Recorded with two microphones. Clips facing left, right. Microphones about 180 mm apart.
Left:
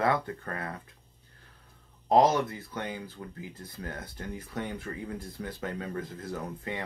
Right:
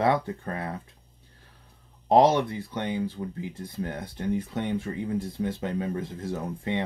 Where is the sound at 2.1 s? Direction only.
30° right (ahead or behind).